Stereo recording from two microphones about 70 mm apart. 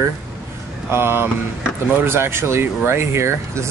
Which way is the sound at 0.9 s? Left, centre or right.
Right.